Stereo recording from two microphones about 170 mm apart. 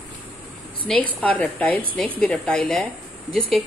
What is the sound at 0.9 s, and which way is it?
A woman's voice, 5° left (ahead or behind).